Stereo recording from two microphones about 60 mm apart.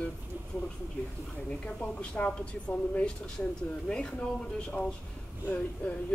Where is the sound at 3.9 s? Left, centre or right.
Centre.